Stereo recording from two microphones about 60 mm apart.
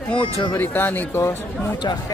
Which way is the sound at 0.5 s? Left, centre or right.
Left.